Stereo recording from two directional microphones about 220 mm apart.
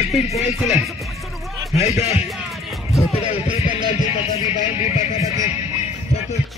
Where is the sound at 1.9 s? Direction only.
30° left (ahead or behind).